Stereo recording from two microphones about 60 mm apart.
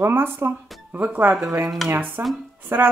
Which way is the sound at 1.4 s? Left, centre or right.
Right.